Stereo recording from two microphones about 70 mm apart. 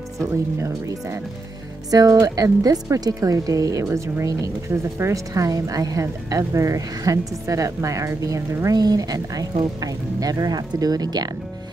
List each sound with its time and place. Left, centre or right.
0.2 s a woman's voice: right
1.9 s a woman's voice: right
8.7 s speech: right